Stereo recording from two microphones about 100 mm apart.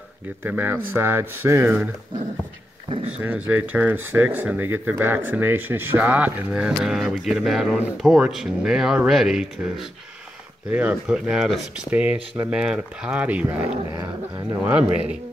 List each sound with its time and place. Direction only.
0.4 s speech: 20° right (ahead or behind)
3.1 s speech: 15° right (ahead or behind)
14.6 s speech: 15° right (ahead or behind)